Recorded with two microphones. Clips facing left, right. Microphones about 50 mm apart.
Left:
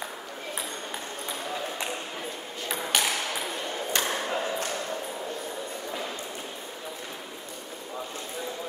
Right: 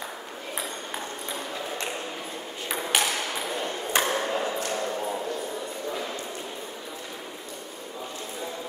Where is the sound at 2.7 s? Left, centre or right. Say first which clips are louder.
Right 1 dB; centre.